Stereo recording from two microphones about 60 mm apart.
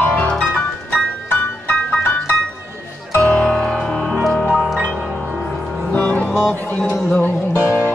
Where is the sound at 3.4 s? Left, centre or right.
Centre.